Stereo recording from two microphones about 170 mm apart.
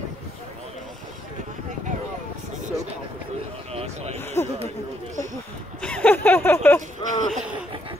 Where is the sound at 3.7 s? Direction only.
40° right (ahead or behind).